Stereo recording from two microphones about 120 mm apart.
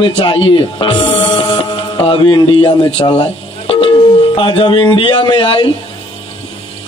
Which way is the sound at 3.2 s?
45° left (ahead or behind).